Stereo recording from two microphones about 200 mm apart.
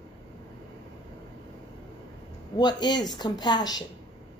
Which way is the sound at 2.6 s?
20° left (ahead or behind).